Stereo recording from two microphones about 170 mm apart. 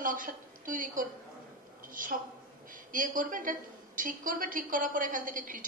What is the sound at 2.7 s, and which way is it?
A woman's voice, 50° right (ahead or behind).